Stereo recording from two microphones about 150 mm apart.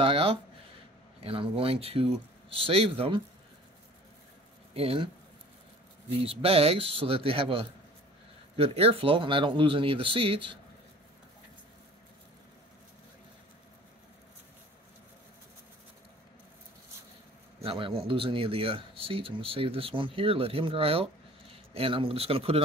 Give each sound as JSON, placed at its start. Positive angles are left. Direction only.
{"t": 0.0, "sound": "a sound", "side_deg": -40}
{"t": 1.2, "sound": "speech", "side_deg": -35}
{"t": 4.7, "sound": "speech", "side_deg": -35}
{"t": 6.2, "sound": "speech", "side_deg": -40}
{"t": 17.6, "sound": "a man's voice", "side_deg": -35}